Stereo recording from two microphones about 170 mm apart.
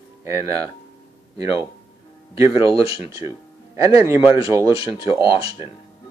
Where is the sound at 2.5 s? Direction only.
30° left (ahead or behind).